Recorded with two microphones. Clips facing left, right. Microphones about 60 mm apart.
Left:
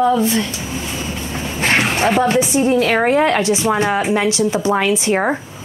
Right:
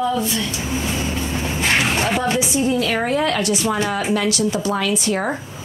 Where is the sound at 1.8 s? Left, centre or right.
Left.